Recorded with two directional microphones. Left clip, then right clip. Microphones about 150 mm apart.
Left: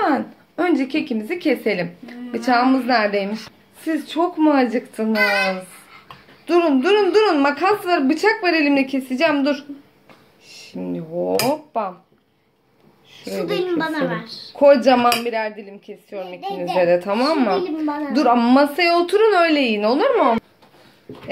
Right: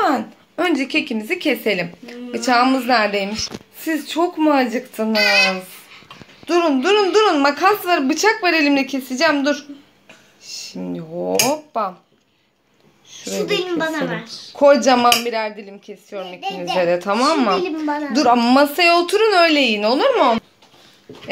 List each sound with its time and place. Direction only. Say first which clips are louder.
0.0 s speech: right 1 dB; 5° right (ahead or behind)
5.2 s child singing: right 3 dB; 10° left (ahead or behind)
6.4 s speech: even; centre (ahead or behind)
13.7 s a woman's voice: even; 25° right (ahead or behind)
14.6 s speech: even; 5° right (ahead or behind)